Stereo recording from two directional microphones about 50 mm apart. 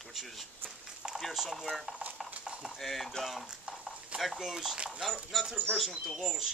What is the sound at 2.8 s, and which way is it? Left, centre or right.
A man's voice, centre.